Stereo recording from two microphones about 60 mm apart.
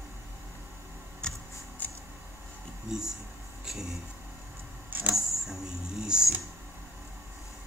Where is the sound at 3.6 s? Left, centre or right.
Centre.